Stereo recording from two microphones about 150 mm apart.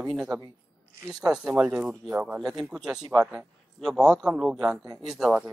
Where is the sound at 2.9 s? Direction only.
25° right (ahead or behind).